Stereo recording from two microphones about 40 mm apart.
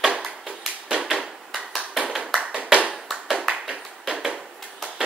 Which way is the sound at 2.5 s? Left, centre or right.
Right.